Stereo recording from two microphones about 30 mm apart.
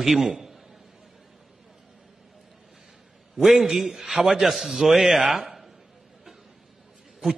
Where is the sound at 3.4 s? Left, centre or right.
Centre.